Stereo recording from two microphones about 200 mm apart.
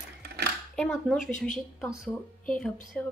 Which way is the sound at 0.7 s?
Centre (ahead or behind).